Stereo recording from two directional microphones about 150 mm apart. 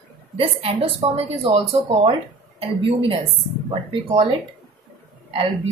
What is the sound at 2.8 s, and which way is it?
Speech, 40° right (ahead or behind).